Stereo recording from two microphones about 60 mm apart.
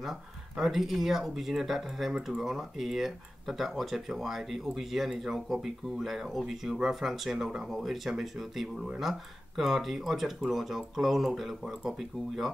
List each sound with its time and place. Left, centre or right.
0.0 s speech: centre